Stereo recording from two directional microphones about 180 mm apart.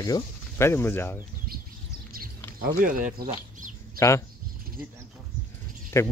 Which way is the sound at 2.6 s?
50° right (ahead or behind).